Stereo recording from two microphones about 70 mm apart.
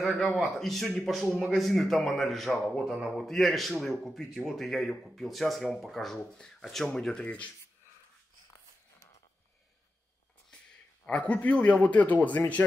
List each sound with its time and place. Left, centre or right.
0.4 s a man's voice: centre
7.2 s speech: left
11.1 s speech: centre